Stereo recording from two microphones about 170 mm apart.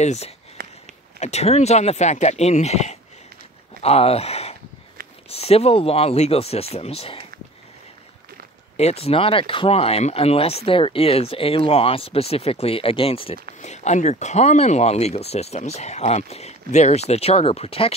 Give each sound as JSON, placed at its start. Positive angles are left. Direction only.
{"t": 0.0, "sound": "speech", "side_deg": 40}
{"t": 0.6, "sound": "a sound", "side_deg": -60}
{"t": 1.2, "sound": "speech", "side_deg": 40}
{"t": 8.7, "sound": "speech", "side_deg": 40}